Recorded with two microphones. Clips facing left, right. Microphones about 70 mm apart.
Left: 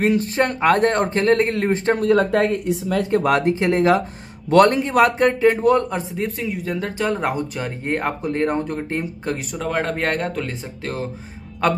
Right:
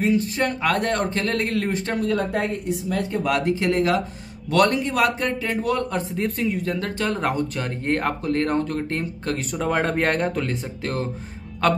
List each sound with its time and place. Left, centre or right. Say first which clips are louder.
0.0 s a man's voice: left 3 dB; left
2.1 s speech: left 6 dB; left
3.3 s a man's voice: left 1 dB; left
6.1 s speech: right 1 dB; centre
9.5 s speech: right 2 dB; centre